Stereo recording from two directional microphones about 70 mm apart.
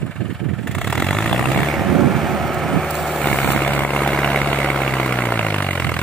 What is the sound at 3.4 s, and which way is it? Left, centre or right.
Vehicle, left.